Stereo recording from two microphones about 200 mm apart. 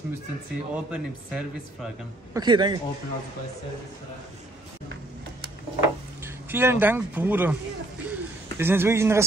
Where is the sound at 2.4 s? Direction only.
20° right (ahead or behind).